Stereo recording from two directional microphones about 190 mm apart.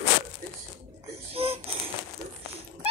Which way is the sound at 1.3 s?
30° right (ahead or behind).